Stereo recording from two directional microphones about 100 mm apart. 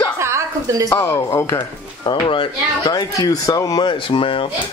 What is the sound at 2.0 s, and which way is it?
Speech, 60° left (ahead or behind).